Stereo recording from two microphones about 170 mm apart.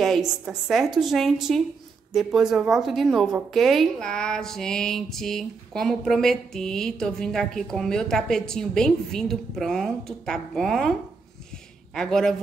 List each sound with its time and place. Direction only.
0.0 s a woman's voice: centre (ahead or behind)